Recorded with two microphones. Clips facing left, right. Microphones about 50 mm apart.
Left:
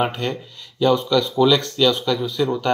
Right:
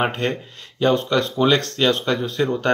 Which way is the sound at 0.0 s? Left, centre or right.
Right.